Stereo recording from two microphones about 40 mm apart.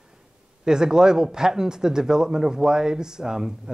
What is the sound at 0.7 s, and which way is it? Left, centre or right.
Speech, centre.